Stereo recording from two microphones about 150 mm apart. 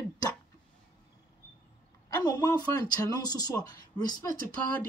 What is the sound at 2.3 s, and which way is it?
Speech, 25° left (ahead or behind).